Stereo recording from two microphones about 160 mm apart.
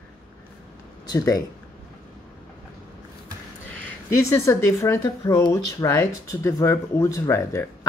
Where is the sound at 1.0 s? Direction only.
20° left (ahead or behind).